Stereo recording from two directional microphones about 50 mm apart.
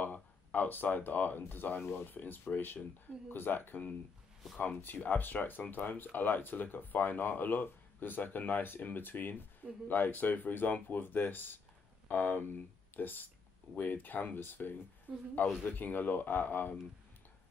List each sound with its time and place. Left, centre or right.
0.0 s speech: left